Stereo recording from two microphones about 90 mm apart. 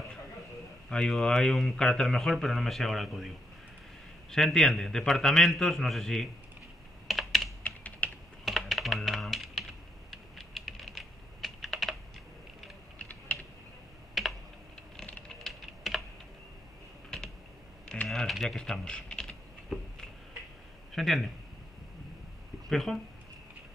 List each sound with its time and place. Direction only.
0.8 s speech: 10° left (ahead or behind)
7.1 s computer keyboard: centre (ahead or behind)
7.6 s typing: 20° left (ahead or behind)
8.5 s typing: centre (ahead or behind)
14.2 s typing: centre (ahead or behind)
17.8 s typing: 5° left (ahead or behind)
20.9 s a sound: centre (ahead or behind)
22.7 s speech: 5° left (ahead or behind)